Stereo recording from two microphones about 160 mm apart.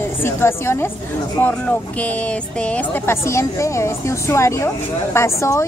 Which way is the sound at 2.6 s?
10° left (ahead or behind).